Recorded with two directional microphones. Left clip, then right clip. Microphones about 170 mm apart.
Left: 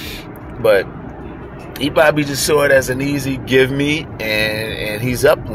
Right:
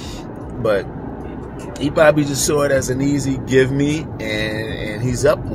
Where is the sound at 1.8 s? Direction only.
25° left (ahead or behind).